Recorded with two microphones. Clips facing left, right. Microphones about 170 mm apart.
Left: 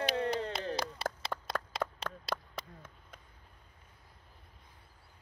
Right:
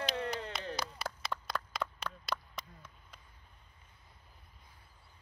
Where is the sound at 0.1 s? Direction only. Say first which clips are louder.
Left 5 dB; 35° left (ahead or behind).